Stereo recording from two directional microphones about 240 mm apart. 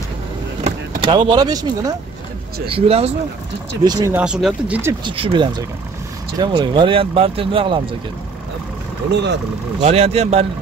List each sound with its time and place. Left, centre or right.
0.7 s speech: right; by 4.9 s centre
5.0 s speech: right
9.8 s speech: right